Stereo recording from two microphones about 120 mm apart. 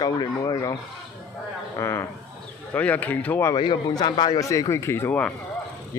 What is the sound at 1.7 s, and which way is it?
Speech, 25° left (ahead or behind).